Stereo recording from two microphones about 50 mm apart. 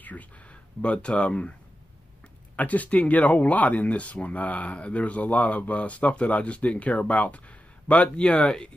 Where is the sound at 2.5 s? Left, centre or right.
Left.